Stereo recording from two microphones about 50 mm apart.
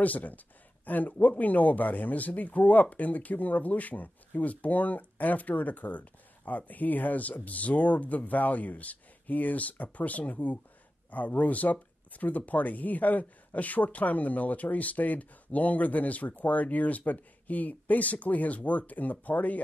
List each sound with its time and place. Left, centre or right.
0.0 s speech: left